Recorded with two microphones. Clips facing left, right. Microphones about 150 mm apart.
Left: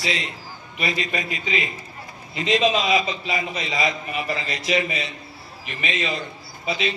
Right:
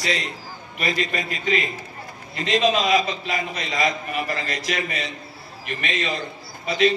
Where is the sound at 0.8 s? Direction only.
40° right (ahead or behind).